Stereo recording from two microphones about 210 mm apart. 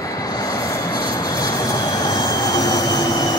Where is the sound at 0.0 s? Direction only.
15° left (ahead or behind).